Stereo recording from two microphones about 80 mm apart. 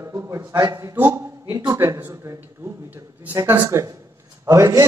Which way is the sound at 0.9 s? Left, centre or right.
Right.